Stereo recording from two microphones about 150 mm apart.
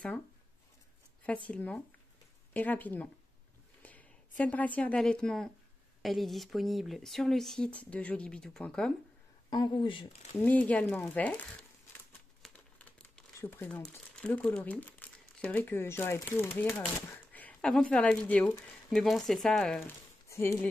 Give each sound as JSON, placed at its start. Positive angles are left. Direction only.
{"t": 1.5, "sound": "a woman's voice", "side_deg": 10}
{"t": 3.8, "sound": "a sound", "side_deg": 10}
{"t": 4.4, "sound": "a woman's voice", "side_deg": 10}
{"t": 9.5, "sound": "speech", "side_deg": 30}
{"t": 10.4, "sound": "a woman's voice", "side_deg": 10}
{"t": 19.8, "sound": "a sound", "side_deg": 20}